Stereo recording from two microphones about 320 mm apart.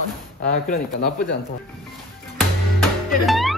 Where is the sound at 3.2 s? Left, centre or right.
Centre.